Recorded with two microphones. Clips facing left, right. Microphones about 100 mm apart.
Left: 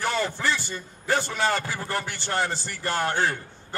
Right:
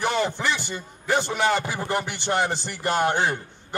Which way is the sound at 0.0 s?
20° right (ahead or behind).